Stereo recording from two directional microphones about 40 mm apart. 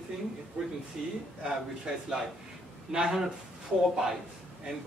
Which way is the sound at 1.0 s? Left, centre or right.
Centre.